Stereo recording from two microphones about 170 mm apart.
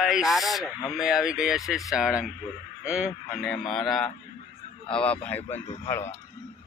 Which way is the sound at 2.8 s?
5° right (ahead or behind).